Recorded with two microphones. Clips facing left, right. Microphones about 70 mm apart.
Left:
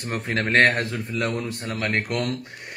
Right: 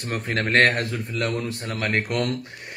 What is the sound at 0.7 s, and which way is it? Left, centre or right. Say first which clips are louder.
Speech: even; centre.